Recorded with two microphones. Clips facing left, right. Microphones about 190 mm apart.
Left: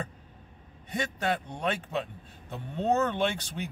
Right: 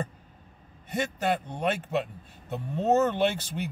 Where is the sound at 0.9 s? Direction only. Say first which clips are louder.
Right 3 dB; 5° right (ahead or behind).